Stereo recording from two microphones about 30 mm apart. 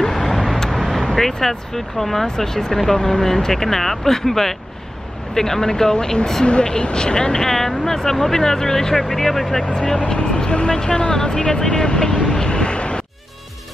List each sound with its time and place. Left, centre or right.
0.0 s vehicle: centre
0.3 s vehicle: centre
0.7 s speech: centre; by 7.4 s left
7.4 s speech: centre
10.0 s speech: left